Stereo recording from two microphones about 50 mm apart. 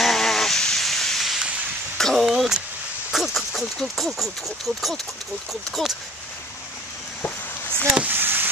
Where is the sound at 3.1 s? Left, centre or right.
Centre.